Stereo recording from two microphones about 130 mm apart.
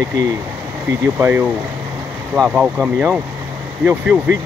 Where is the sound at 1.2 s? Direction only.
15° right (ahead or behind).